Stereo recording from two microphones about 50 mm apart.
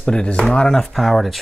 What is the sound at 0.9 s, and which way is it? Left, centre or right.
Speech, centre.